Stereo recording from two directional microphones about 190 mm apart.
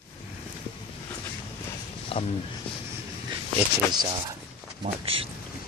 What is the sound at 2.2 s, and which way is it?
Speech, 30° left (ahead or behind).